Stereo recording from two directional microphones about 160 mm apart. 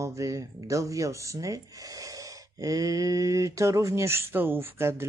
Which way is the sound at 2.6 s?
20° right (ahead or behind).